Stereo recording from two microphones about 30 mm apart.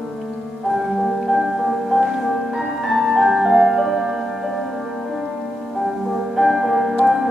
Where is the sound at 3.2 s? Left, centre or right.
Centre.